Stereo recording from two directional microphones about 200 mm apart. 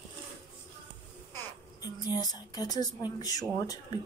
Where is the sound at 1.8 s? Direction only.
20° left (ahead or behind).